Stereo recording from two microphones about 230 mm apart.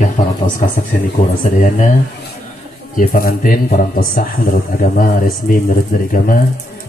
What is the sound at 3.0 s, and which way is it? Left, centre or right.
A man's voice, left.